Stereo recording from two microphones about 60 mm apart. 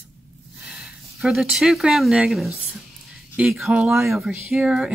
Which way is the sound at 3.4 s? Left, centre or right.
Right.